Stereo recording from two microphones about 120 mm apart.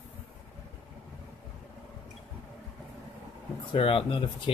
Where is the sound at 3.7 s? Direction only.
45° left (ahead or behind).